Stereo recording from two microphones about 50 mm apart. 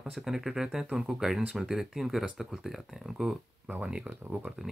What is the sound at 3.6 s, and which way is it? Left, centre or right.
Speech, right.